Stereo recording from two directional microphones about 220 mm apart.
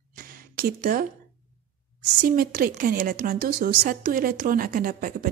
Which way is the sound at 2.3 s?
40° right (ahead or behind).